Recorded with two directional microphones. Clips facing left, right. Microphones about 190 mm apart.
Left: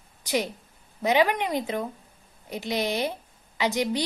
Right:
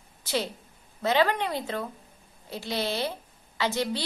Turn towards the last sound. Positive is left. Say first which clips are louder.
# left 2 dB
turn(degrees=15)  # may be behind; listen again after turning